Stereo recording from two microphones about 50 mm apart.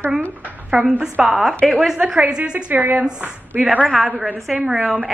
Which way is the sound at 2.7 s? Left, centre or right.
Right.